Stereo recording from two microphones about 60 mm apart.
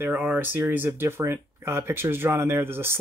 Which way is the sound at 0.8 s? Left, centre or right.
Right.